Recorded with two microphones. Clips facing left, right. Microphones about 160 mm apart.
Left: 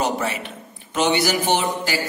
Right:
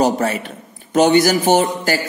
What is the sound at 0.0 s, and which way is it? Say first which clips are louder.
A man's voice: right 6 dB; 40° right (ahead or behind).